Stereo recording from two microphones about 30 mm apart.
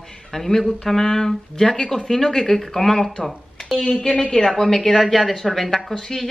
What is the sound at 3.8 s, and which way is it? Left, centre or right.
Speech, left.